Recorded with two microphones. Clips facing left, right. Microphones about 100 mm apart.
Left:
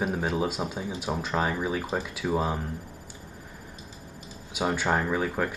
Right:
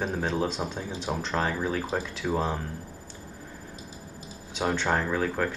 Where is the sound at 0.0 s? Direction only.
10° left (ahead or behind).